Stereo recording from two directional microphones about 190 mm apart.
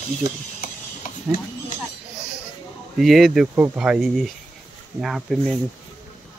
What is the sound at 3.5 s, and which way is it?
Speech, 10° right (ahead or behind).